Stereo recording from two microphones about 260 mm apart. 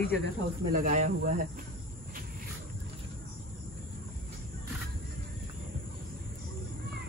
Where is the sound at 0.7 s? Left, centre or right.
Right.